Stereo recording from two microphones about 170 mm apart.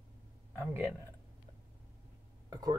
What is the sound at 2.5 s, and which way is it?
Speech, 25° right (ahead or behind).